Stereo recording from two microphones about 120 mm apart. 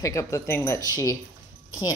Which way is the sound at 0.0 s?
25° left (ahead or behind).